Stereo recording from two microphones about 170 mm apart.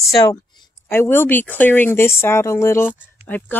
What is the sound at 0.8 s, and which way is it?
Speech, 15° left (ahead or behind).